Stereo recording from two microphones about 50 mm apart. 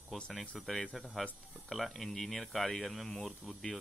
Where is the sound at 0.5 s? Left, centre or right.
Centre.